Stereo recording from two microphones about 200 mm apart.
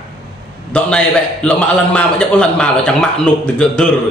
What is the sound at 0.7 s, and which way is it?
A man's voice, 5° left (ahead or behind).